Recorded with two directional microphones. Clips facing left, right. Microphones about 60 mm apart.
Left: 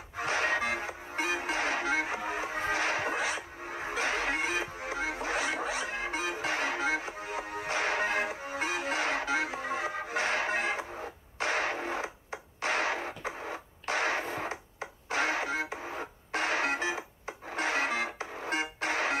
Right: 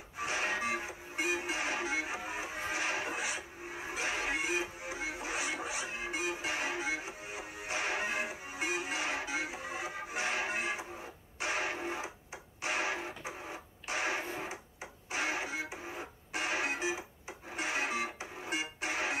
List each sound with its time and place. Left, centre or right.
0.2 s music: left
11.3 s radio: left
16.3 s music: left